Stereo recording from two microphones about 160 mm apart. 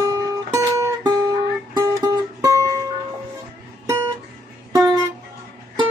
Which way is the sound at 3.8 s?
20° right (ahead or behind).